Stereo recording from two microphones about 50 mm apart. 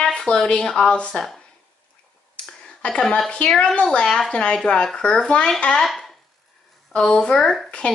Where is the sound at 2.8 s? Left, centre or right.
Left.